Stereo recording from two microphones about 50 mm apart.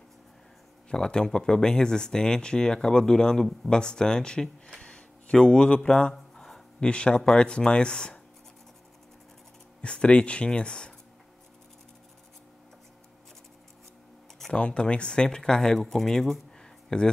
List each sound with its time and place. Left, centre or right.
0.8 s speech: centre
4.7 s a sound: centre
6.9 s speech: centre
9.8 s speech: left
14.5 s speech: centre
16.9 s speech: centre